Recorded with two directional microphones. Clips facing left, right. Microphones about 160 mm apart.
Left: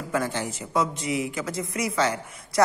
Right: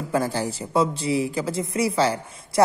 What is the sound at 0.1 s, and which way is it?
A woman's voice, 35° right (ahead or behind).